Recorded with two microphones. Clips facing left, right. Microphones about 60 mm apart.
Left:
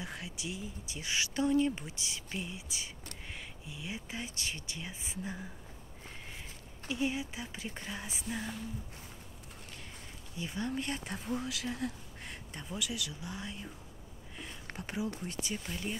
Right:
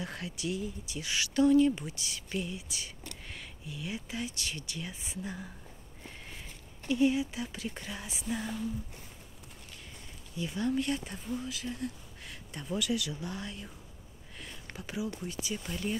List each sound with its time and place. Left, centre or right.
0.0 s speech: centre
6.9 s speech: left
10.3 s speech: left
11.1 s speech: left
11.4 s speech: left
12.6 s speech: centre
14.8 s speech: left